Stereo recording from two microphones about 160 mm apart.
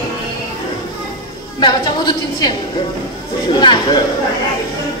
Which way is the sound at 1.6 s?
25° left (ahead or behind).